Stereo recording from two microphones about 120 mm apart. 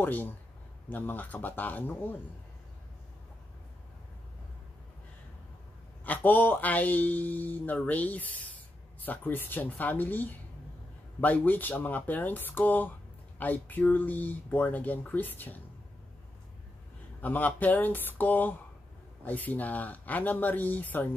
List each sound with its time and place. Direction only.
0.0 s speech: 15° left (ahead or behind)
6.0 s speech: 15° left (ahead or behind)
17.2 s speech: 15° left (ahead or behind)